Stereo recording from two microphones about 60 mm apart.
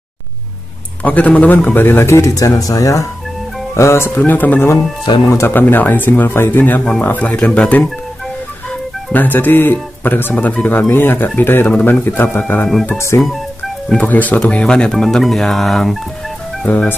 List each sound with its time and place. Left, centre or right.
1.0 s speech: left
1.8 s speech: left
2.3 s speech: left
3.7 s speech: left
4.2 s speech: left
6.8 s speech: centre
7.1 s speech: left
7.3 s speech: centre
9.1 s speech: left
10.3 s speech: left
10.9 s speech: left
12.9 s speech: left
13.9 s speech: left; by 16.0 s centre
16.6 s speech: left